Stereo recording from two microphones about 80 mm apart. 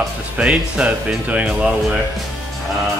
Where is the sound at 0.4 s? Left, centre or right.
Centre.